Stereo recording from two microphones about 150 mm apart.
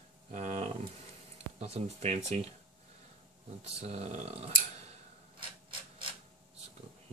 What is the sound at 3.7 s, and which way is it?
Speech, 45° right (ahead or behind).